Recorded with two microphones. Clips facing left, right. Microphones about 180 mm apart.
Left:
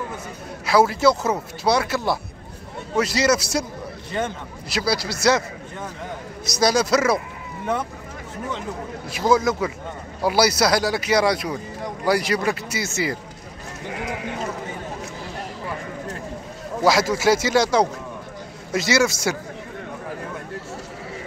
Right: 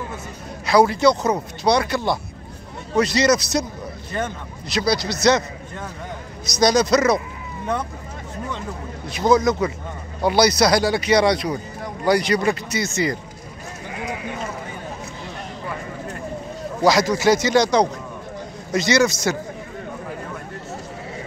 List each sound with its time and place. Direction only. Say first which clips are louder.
0.7 s a man's voice: right 2 dB; 5° left (ahead or behind)
6.6 s speech: right 2 dB; 5° left (ahead or behind)
9.1 s speech: right 2 dB; 5° left (ahead or behind)
16.8 s a man's voice: right 2 dB; 5° left (ahead or behind)